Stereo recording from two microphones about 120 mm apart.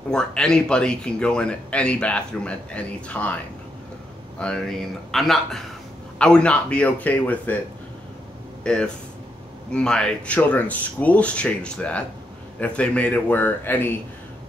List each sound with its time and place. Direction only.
0.1 s speech: 5° left (ahead or behind)
4.4 s a man's voice: 5° left (ahead or behind)
8.6 s speech: 10° left (ahead or behind)